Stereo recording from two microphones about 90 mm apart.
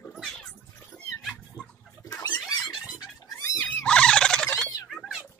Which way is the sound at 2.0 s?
40° left (ahead or behind).